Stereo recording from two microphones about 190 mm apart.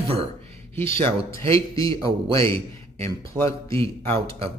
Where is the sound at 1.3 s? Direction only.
15° left (ahead or behind).